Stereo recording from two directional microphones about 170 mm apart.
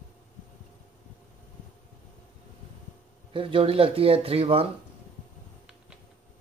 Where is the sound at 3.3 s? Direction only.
30° right (ahead or behind).